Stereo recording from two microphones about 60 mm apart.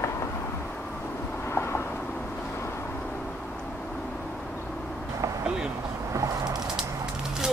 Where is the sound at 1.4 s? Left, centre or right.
Left.